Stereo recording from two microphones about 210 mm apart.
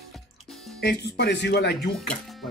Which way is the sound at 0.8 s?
50° left (ahead or behind).